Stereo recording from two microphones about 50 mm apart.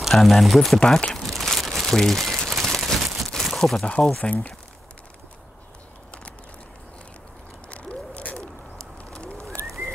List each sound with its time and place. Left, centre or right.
0.1 s speech: centre
0.7 s crumpling: centre
3.8 s speech: centre
9.1 s bird: centre